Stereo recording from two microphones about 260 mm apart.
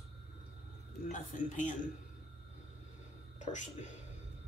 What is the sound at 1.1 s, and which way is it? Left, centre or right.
Speech, left.